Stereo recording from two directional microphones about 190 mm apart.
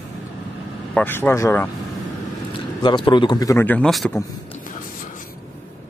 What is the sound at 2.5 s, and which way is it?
Speech, 25° left (ahead or behind).